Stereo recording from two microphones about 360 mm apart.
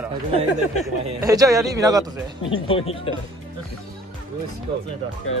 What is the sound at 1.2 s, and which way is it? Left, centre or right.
Speech, centre.